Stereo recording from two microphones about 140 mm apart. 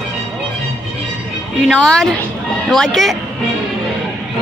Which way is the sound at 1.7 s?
5° left (ahead or behind).